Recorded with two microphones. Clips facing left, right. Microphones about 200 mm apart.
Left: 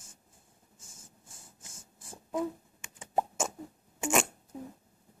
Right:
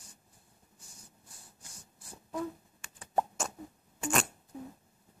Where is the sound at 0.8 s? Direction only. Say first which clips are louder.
Left 1 dB; 50° left (ahead or behind).